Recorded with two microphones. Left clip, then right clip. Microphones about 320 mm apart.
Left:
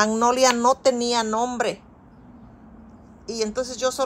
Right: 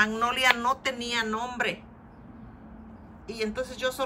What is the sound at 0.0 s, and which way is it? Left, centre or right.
Speech, centre.